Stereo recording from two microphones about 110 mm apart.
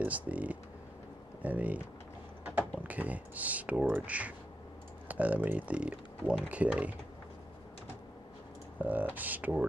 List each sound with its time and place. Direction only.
0.0 s speech: 15° right (ahead or behind)
8.7 s speech: 15° right (ahead or behind)